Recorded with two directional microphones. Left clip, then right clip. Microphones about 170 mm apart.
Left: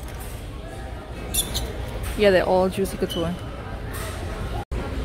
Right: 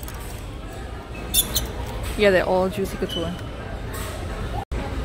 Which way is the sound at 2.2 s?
5° left (ahead or behind).